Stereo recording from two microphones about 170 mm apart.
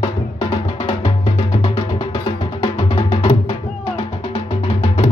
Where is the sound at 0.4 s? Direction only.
30° left (ahead or behind).